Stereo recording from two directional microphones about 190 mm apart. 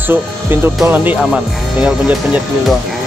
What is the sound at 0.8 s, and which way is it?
Speech, 10° right (ahead or behind).